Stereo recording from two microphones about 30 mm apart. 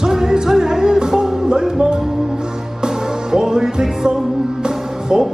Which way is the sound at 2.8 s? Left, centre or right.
Right.